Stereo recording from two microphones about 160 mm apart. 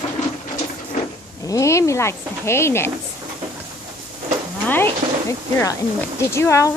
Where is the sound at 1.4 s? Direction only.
20° left (ahead or behind).